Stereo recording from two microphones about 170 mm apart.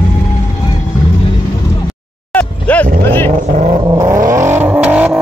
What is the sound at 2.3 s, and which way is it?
Vehicle, 10° left (ahead or behind).